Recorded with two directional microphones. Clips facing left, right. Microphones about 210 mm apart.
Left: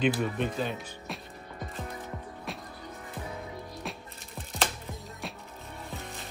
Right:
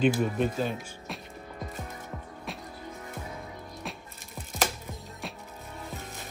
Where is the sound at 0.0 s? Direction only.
45° right (ahead or behind).